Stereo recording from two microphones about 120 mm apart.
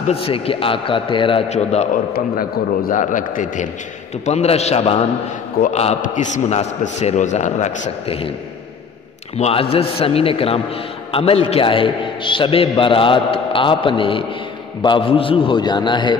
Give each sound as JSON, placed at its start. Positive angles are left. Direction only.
{"t": 0.1, "sound": "a man's voice", "side_deg": 50}
{"t": 1.5, "sound": "a man's voice", "side_deg": 65}
{"t": 2.9, "sound": "a man's voice", "side_deg": 90}
{"t": 4.3, "sound": "a man's voice", "side_deg": 65}
{"t": 9.4, "sound": "a man's voice", "side_deg": 55}